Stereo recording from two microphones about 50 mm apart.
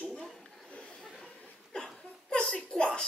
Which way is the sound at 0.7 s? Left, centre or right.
Centre.